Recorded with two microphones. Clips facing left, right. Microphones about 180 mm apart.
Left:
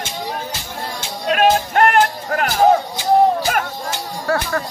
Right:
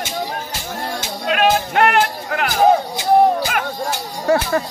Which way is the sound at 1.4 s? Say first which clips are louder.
Left 1 dB; 45° left (ahead or behind).